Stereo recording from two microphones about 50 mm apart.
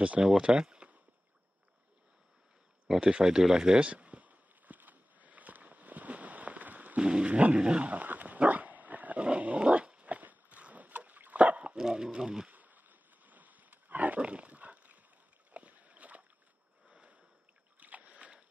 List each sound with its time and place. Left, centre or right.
0.2 s speech: centre
2.9 s speech: centre
3.9 s a sound: right
7.0 s dog: centre; by 9.2 s right
9.2 s dog: right
11.8 s speech: centre
12.4 s wild animals: right
15.5 s boat: right
16.8 s a sound: right
17.7 s boat: right